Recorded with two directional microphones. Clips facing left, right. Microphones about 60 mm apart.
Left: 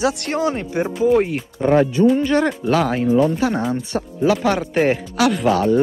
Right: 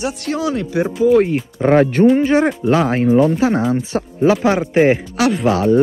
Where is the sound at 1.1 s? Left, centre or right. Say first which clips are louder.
Right 5 dB; centre.